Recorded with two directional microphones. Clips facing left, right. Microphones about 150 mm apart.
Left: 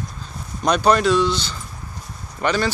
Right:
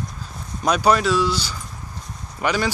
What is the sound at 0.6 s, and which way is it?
Speech, 5° right (ahead or behind).